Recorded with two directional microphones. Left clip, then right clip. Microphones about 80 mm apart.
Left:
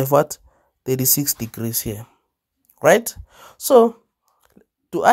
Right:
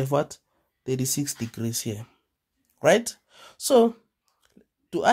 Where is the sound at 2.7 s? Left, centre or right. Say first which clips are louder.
Left 5 dB; left.